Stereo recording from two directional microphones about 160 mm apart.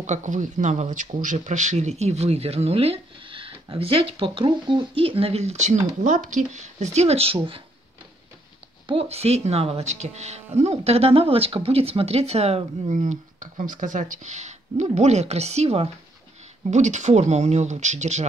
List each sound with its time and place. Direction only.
0.0 s speech: 50° right (ahead or behind); by 7.6 s 35° right (ahead or behind)
8.8 s speech: 40° right (ahead or behind)